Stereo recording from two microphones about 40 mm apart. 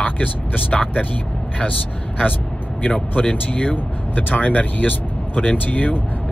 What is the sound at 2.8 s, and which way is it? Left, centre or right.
Speech, left.